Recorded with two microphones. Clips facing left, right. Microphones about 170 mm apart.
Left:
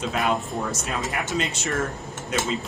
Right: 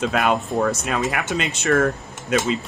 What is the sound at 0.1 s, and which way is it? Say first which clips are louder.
Speech: right 4 dB; 70° right (ahead or behind).